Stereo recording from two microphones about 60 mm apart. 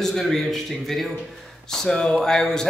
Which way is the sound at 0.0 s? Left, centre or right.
Centre.